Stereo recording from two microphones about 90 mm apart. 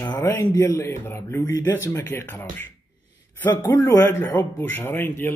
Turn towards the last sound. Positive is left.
turn(degrees=25)  # may be behind; listen again after turning